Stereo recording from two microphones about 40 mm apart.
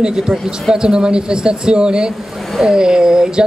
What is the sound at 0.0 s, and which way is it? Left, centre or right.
Speech, centre.